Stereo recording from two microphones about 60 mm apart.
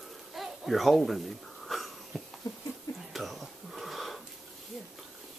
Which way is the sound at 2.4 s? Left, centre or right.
Left.